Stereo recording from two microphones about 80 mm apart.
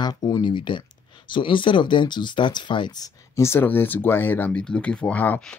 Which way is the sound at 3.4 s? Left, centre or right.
Left.